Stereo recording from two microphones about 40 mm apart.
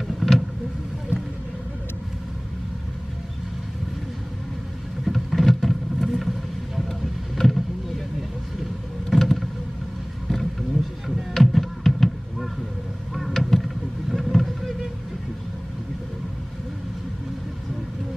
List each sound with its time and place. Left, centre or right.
0.2 s vehicle: centre
1.1 s a sound: left
5.0 s vehicle: centre
5.9 s boat: centre
9.1 s vehicle: centre
11.3 s a sound: centre
13.1 s vehicle: centre
14.1 s boat: centre